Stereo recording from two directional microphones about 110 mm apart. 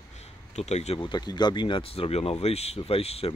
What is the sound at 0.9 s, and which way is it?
Speech, 45° left (ahead or behind).